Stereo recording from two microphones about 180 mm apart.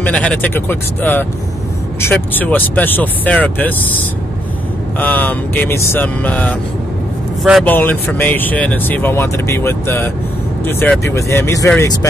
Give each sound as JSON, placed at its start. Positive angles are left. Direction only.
{"t": 0.0, "sound": "speech", "side_deg": 5}
{"t": 7.6, "sound": "speech", "side_deg": 10}